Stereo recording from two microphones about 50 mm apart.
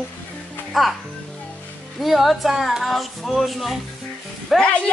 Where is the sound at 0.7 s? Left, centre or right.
Centre.